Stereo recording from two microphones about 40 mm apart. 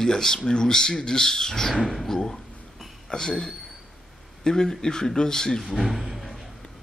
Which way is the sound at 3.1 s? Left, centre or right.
Centre.